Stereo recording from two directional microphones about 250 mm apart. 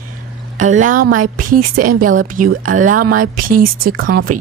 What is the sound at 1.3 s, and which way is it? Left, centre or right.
Speech, right.